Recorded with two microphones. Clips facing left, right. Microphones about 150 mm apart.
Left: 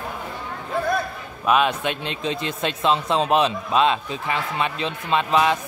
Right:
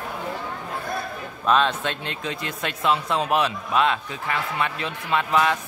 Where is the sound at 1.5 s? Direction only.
10° left (ahead or behind).